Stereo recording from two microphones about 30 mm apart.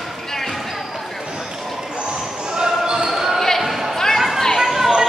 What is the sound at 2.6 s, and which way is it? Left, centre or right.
Basketball bounce, right.